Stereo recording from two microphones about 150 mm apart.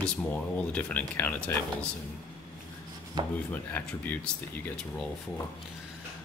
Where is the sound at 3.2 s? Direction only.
30° right (ahead or behind).